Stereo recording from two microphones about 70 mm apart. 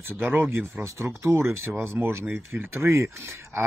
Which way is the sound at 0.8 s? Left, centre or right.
Right.